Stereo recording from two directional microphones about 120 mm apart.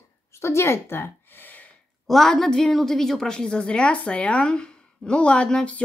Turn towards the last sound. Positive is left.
turn(degrees=10)  # may be behind; listen again after turning